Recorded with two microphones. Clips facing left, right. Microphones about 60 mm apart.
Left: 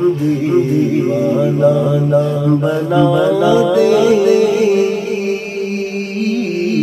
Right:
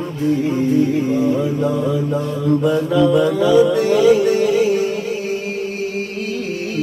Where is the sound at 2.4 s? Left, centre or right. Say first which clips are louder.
Left 2 dB; left.